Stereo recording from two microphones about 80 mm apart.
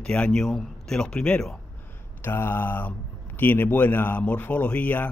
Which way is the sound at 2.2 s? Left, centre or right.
Left.